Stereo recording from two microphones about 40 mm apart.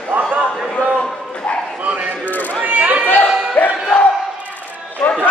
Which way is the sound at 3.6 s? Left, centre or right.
Left.